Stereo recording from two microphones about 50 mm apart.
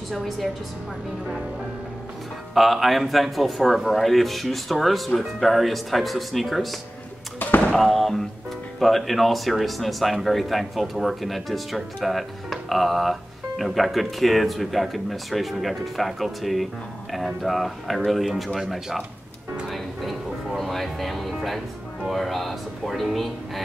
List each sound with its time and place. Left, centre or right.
2.5 s speech: centre
7.3 s a sound: left
7.7 s speech: centre
19.7 s music: centre